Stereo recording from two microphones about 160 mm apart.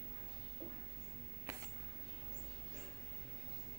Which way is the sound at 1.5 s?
15° right (ahead or behind).